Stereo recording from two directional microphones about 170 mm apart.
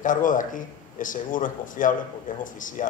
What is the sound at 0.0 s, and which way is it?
Speech, 50° left (ahead or behind).